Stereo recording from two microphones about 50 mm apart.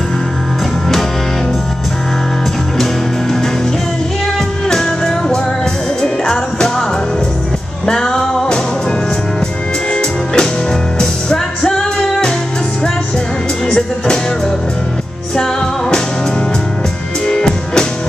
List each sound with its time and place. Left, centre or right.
4.6 s music: centre
7.8 s music: centre
9.9 s music: centre
13.7 s music: centre
17.3 s music: centre